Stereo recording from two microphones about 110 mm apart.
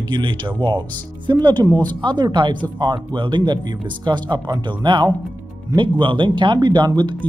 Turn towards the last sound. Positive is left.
turn(degrees=-40)  # may be behind; listen again after turning